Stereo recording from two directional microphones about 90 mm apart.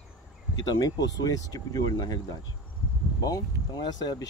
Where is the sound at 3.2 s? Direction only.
50° left (ahead or behind).